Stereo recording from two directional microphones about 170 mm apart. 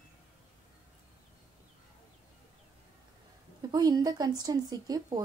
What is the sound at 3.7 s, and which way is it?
A woman's voice, 25° right (ahead or behind).